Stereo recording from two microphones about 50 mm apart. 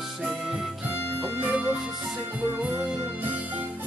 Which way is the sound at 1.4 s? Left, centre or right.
Right.